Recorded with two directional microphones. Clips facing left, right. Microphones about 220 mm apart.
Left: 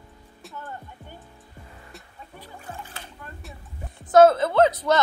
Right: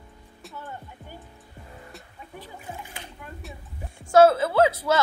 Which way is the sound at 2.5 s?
10° right (ahead or behind).